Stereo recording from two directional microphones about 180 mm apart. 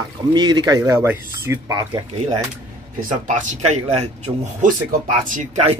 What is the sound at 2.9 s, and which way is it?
Speech, 45° right (ahead or behind).